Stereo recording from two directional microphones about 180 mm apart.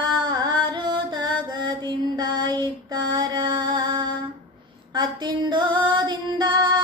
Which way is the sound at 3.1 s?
25° right (ahead or behind).